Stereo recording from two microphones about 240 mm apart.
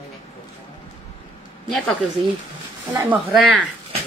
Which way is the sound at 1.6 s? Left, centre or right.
Centre.